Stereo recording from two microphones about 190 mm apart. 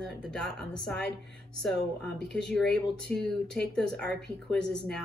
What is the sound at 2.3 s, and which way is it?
A woman's voice, 5° left (ahead or behind).